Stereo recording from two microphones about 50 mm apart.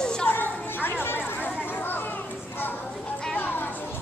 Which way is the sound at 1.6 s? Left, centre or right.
Left.